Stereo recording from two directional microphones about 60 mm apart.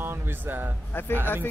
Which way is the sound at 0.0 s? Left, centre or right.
Right.